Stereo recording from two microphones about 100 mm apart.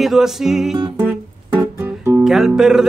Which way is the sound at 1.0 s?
20° right (ahead or behind).